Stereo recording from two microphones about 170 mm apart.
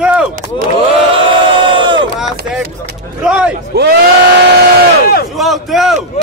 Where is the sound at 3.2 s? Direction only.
5° right (ahead or behind).